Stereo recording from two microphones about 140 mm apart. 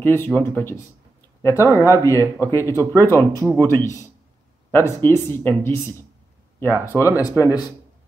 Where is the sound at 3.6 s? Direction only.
15° left (ahead or behind).